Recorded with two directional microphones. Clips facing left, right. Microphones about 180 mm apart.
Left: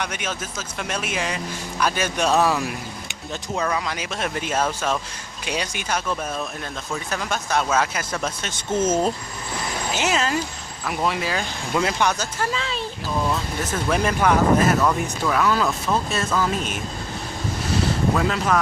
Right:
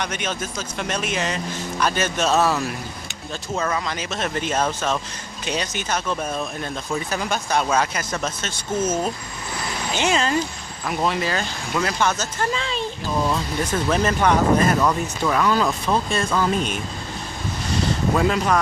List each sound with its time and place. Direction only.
0.0 s speech: 5° left (ahead or behind)
3.7 s speech: 10° left (ahead or behind)
7.1 s speech: centre (ahead or behind); by 9.1 s 30° left (ahead or behind)
9.9 s speech: 5° left (ahead or behind)
18.1 s speech: 5° right (ahead or behind)